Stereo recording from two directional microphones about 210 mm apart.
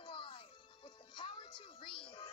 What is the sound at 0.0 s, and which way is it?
Music, 25° left (ahead or behind).